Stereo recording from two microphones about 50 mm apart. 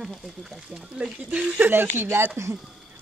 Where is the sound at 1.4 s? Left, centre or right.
Right.